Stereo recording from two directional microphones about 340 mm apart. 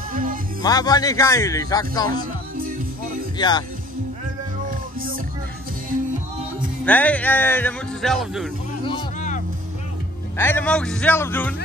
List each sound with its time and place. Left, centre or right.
0.1 s music: right
0.6 s speech: centre
3.3 s speech: centre
4.6 s music: right
6.8 s speech: centre
8.8 s music: centre
10.3 s speech: centre